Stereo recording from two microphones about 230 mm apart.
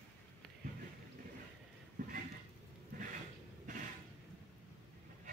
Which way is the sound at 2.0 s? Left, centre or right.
Right.